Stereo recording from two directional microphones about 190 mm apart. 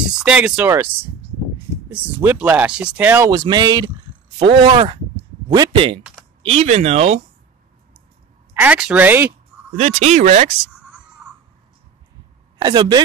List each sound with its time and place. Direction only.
0.1 s speech: 5° right (ahead or behind)
1.9 s speech: 10° right (ahead or behind)
3.3 s speech: 20° right (ahead or behind)
6.5 s speech: 35° right (ahead or behind)
8.5 s speech: 5° right (ahead or behind)
9.8 s speech: 35° right (ahead or behind)
12.5 s speech: 20° right (ahead or behind)